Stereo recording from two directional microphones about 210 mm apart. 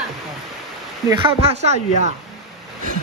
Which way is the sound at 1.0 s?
25° right (ahead or behind).